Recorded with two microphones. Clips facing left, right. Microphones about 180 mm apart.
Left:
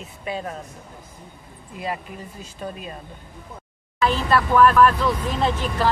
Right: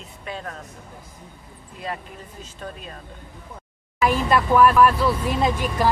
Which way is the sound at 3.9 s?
10° right (ahead or behind).